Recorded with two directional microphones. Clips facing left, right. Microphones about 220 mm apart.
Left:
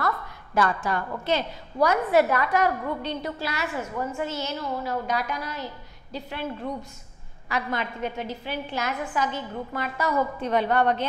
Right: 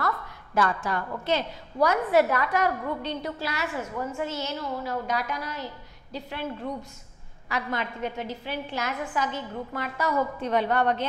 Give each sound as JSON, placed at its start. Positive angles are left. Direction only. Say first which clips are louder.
{"t": 0.0, "sound": "a sound", "louder": "left 1 dB", "side_deg": 15}
{"t": 1.2, "sound": "a woman's voice", "louder": "even", "side_deg": 10}
{"t": 4.3, "sound": "a woman's voice", "louder": "left 1 dB", "side_deg": 10}